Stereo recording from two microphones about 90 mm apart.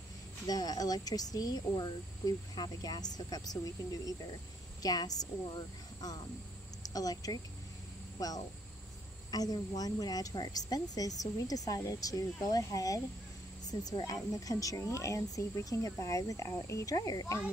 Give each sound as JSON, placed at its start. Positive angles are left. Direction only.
{"t": 0.5, "sound": "a woman's voice", "side_deg": 45}